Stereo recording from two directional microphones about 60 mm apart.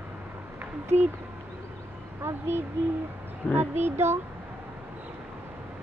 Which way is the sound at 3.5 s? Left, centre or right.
Right.